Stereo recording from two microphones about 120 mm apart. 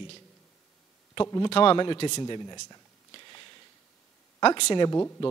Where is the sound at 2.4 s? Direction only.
25° left (ahead or behind).